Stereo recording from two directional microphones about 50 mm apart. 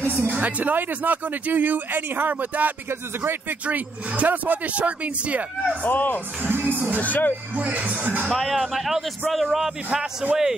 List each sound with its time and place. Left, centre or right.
0.0 s speech: right
0.4 s speech: right
2.9 s speech: right
3.6 s speech: right
5.8 s speech: left
6.4 s speech: right
7.0 s speech: left
7.5 s speech: right
8.3 s speech: centre
10.2 s a man's voice: centre